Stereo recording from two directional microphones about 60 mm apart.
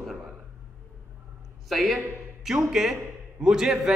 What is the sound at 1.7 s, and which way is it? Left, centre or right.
A man's voice, centre.